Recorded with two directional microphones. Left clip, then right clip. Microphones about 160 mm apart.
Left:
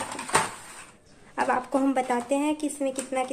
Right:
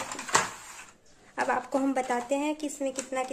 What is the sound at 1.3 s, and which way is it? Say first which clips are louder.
A woman's voice: left 3 dB; 15° right (ahead or behind).